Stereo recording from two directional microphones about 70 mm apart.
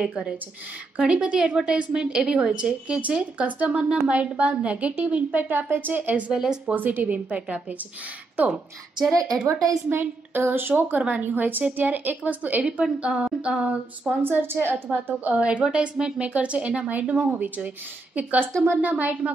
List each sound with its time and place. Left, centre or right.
0.1 s a woman's voice: centre
6.3 s a woman's voice: centre
6.7 s speech: right
9.1 s speech: right
9.8 s a woman's voice: right
12.6 s a woman's voice: centre
14.2 s a woman's voice: right
18.7 s speech: right